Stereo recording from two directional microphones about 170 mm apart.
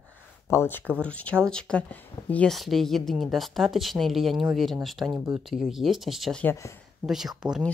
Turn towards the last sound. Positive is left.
turn(degrees=-5)  # may be behind; listen again after turning